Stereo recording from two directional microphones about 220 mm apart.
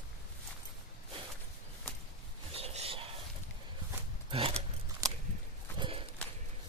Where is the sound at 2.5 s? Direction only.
30° right (ahead or behind).